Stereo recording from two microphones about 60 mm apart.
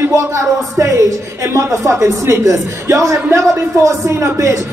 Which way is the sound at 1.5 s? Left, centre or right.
Right.